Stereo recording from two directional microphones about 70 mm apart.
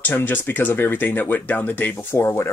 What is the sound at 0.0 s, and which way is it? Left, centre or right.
Speech, left.